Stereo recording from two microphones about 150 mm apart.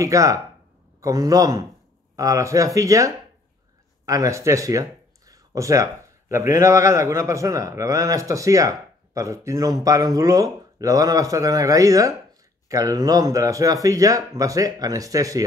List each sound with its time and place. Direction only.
0.0 s speech: 20° right (ahead or behind)